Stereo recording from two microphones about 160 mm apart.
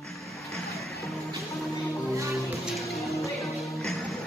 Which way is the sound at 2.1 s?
20° right (ahead or behind).